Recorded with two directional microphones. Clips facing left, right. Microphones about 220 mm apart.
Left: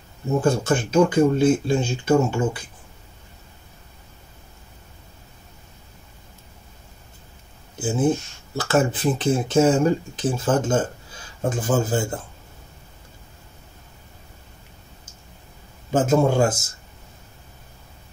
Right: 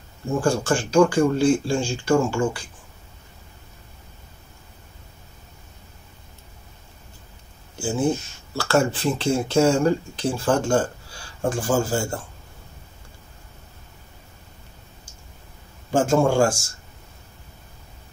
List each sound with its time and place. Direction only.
0.3 s speech: 20° left (ahead or behind)
7.7 s speech: 20° left (ahead or behind)
15.9 s speech: 20° left (ahead or behind)